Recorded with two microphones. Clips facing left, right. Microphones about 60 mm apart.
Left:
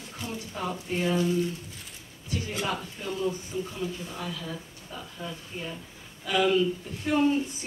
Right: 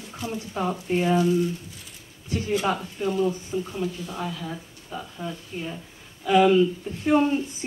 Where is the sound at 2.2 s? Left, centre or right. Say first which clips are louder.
Right 4 dB; right.